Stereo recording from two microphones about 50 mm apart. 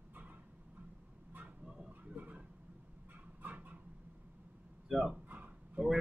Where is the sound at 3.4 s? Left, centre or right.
Right.